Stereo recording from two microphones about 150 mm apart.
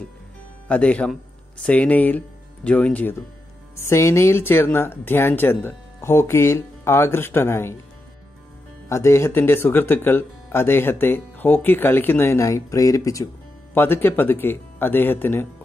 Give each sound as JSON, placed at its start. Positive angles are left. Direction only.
{"t": 0.7, "sound": "speech", "side_deg": 10}
{"t": 8.8, "sound": "speech", "side_deg": 20}